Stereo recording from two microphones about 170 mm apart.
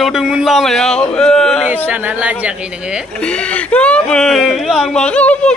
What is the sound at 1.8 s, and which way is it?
Speech, 10° right (ahead or behind).